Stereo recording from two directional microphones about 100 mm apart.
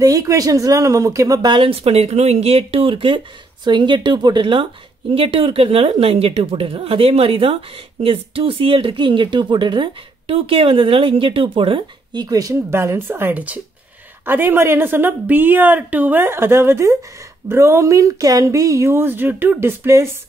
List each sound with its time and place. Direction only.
0.0 s speech: 35° right (ahead or behind)
1.7 s speech: 85° right; by 3.2 s 60° right (ahead or behind)
3.6 s speech: 50° right (ahead or behind)
5.1 s speech: 65° right (ahead or behind); by 12.5 s 40° right (ahead or behind)
12.7 s a woman's voice: 25° right (ahead or behind)